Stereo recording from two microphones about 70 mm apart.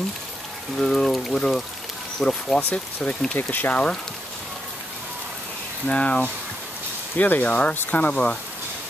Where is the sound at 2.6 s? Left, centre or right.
Left.